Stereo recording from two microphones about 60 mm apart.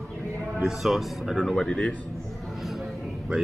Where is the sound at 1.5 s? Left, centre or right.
Centre.